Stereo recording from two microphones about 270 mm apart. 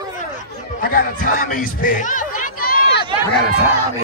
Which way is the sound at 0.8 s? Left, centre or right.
Left.